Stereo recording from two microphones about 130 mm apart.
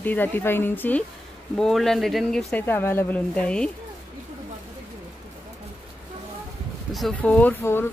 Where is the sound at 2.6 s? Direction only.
15° left (ahead or behind).